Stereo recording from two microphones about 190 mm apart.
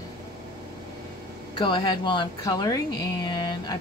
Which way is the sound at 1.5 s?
25° left (ahead or behind).